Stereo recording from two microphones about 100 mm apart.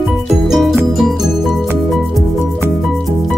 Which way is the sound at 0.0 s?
Centre (ahead or behind).